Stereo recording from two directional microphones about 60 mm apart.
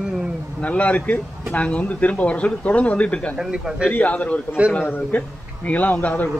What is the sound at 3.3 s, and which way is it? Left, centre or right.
Speech, centre.